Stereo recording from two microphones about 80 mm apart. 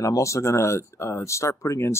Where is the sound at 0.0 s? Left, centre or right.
Left.